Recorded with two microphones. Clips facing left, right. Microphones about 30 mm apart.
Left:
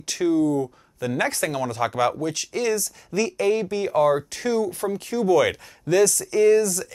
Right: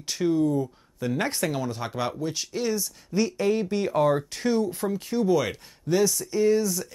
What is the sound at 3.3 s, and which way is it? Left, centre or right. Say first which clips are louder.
Speech: left 2 dB; left.